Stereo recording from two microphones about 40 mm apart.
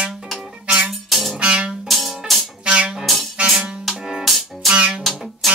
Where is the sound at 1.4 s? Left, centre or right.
Right.